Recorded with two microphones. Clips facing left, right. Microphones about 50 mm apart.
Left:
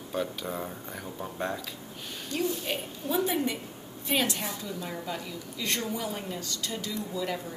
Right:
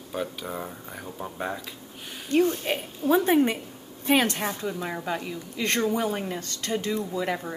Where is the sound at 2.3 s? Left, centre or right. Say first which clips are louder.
Right 8 dB; right.